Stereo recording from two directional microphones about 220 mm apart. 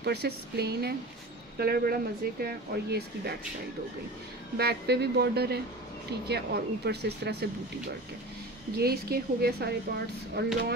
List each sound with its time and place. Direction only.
0.0 s speech: 50° right (ahead or behind)
4.6 s speech: 45° right (ahead or behind)
8.7 s speech: 45° right (ahead or behind)